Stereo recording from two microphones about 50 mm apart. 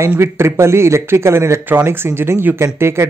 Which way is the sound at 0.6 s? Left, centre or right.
Right.